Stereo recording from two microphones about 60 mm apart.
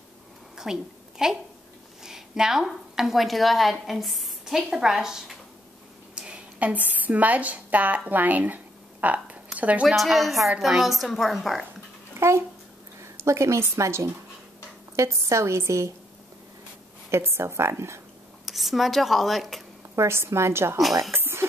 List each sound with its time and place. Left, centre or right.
0.6 s a sound: centre
2.0 s a woman's voice: centre
6.1 s a woman's voice: centre
9.8 s speech: centre
12.1 s a sound: right
13.0 s a woman's voice: right
17.1 s speech: right
18.4 s speech: centre
20.0 s speech: right
21.1 s a sound: right